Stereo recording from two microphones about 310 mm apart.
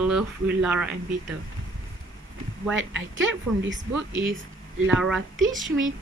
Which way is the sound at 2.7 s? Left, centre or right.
Right.